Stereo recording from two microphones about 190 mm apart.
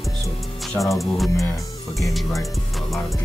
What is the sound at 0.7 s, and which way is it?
Speech, centre (ahead or behind).